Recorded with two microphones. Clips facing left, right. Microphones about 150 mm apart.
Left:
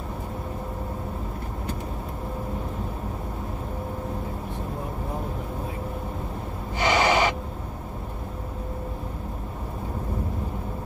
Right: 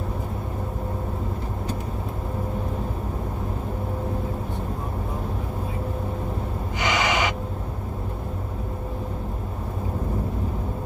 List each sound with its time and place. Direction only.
6.8 s gasp: 35° left (ahead or behind)